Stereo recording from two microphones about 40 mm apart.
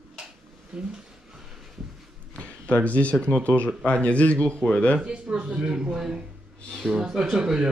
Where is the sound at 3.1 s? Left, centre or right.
Left.